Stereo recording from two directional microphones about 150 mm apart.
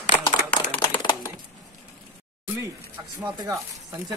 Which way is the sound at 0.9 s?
30° left (ahead or behind).